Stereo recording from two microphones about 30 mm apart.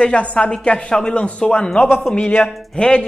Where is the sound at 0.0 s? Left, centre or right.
Left.